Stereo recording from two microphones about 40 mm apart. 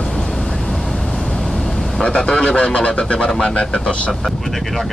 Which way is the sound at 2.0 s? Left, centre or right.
Left.